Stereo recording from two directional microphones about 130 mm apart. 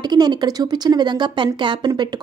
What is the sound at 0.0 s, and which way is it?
A woman's voice, 35° right (ahead or behind).